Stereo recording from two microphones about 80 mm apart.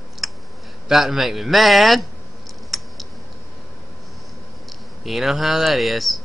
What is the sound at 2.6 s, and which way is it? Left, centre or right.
Typing, centre.